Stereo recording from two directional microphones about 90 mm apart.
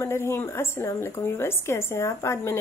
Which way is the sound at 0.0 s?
30° left (ahead or behind).